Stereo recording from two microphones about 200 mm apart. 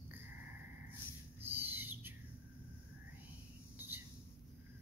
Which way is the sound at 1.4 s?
10° right (ahead or behind).